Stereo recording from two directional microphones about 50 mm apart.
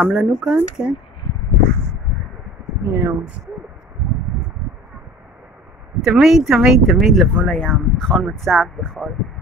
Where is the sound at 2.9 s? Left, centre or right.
Right.